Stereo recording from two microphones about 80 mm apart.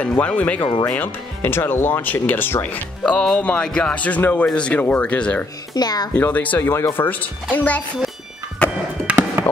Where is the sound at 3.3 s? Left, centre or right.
Centre.